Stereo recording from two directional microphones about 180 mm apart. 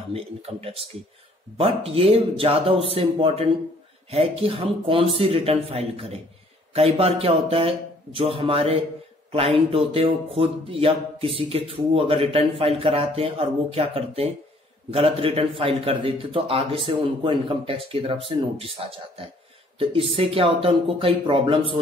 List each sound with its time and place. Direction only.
0.1 s speech: 30° right (ahead or behind)